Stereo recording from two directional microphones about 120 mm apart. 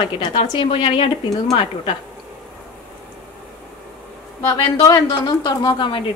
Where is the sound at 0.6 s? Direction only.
45° left (ahead or behind).